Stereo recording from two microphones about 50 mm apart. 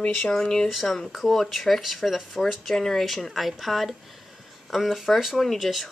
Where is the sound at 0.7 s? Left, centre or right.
Centre.